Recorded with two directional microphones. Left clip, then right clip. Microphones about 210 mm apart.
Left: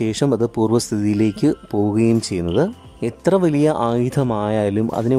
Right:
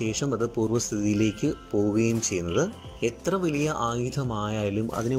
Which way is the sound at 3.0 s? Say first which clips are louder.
Left 9 dB; 30° left (ahead or behind).